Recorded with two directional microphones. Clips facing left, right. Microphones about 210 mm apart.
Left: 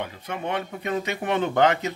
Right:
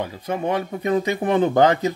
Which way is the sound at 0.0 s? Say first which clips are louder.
Right 6 dB; 35° right (ahead or behind).